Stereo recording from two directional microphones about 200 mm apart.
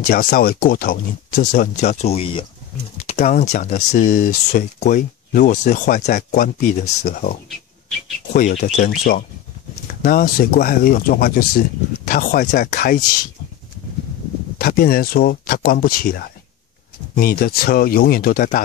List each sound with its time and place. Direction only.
0.0 s speech: 45° left (ahead or behind)
14.6 s speech: 50° left (ahead or behind)